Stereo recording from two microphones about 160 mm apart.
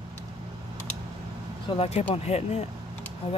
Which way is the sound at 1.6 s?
40° left (ahead or behind).